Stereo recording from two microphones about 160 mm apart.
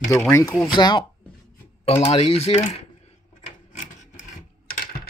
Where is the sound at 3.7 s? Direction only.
50° left (ahead or behind).